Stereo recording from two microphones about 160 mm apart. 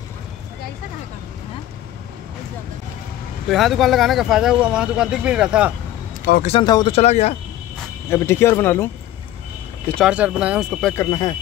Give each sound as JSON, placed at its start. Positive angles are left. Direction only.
{"t": 3.4, "sound": "speech", "side_deg": 0}
{"t": 6.3, "sound": "speech", "side_deg": 90}
{"t": 6.6, "sound": "speech", "side_deg": 25}
{"t": 6.9, "sound": "speech", "side_deg": 45}
{"t": 8.1, "sound": "speech", "side_deg": 15}
{"t": 9.9, "sound": "speech", "side_deg": -5}
{"t": 11.0, "sound": "speech", "side_deg": 25}